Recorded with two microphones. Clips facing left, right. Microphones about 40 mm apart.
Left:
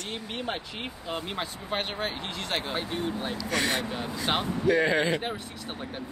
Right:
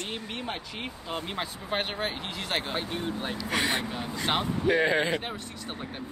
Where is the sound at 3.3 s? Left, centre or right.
Centre.